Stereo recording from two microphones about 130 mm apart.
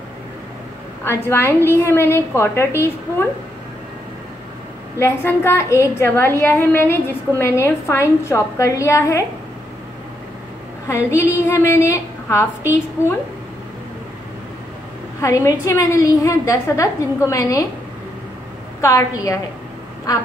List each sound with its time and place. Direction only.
1.0 s a woman's voice: 15° left (ahead or behind)
4.9 s a woman's voice: 20° left (ahead or behind)
11.1 s a woman's voice: 20° left (ahead or behind)
15.2 s a woman's voice: 25° left (ahead or behind)
18.8 s a woman's voice: 25° left (ahead or behind)